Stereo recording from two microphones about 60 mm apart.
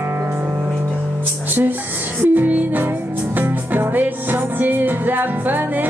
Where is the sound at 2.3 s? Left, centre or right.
Right.